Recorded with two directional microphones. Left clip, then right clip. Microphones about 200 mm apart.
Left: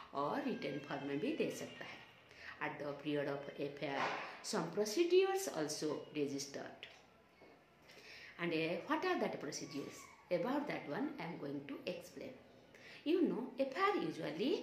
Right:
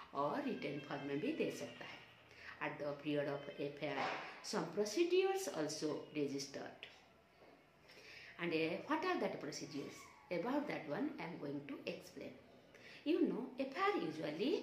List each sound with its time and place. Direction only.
0.1 s speech: 15° left (ahead or behind)
8.4 s speech: 15° left (ahead or behind)